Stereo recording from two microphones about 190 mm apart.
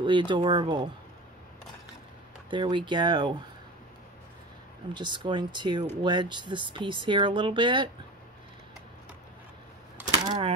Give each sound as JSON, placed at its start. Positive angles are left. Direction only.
{"t": 0.0, "sound": "speech", "side_deg": -25}
{"t": 2.5, "sound": "speech", "side_deg": -25}
{"t": 4.9, "sound": "speech", "side_deg": -25}
{"t": 10.0, "sound": "a sound", "side_deg": -20}